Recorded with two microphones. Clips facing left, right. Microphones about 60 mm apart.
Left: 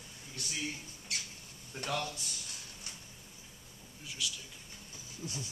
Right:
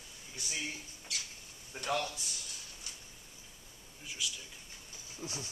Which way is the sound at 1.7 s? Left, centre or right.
Centre.